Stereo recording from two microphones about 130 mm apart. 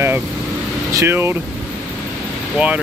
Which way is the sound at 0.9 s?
20° right (ahead or behind).